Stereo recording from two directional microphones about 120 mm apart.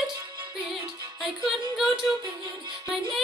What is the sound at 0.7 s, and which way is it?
Music, 45° right (ahead or behind).